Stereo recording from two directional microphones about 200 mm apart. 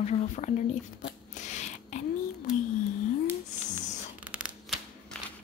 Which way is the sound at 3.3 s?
10° right (ahead or behind).